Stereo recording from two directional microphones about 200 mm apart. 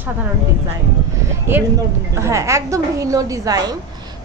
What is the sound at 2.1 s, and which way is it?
Speech, 15° right (ahead or behind).